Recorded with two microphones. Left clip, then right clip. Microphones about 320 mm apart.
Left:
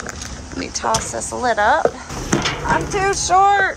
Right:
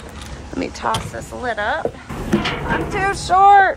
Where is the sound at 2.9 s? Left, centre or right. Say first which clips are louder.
Even; centre.